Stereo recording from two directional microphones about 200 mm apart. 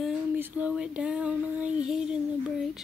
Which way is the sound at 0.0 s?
10° right (ahead or behind).